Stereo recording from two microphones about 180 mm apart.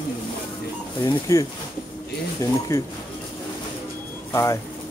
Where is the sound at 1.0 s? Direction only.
25° left (ahead or behind).